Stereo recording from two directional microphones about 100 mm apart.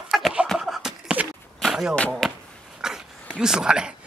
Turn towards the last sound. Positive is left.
turn(degrees=-10)  # may be behind; listen again after turning